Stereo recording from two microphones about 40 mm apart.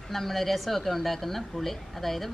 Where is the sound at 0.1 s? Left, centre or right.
Centre.